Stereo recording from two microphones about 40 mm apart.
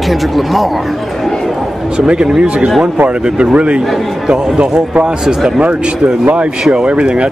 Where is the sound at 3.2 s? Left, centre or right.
Right.